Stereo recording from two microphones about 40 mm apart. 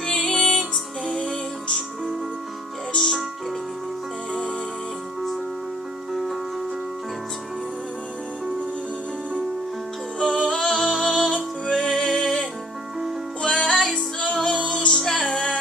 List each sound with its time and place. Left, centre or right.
0.0 s music: centre
0.4 s music: centre
1.0 s music: left
4.3 s music: left
10.1 s music: left
13.7 s music: centre
14.2 s music: centre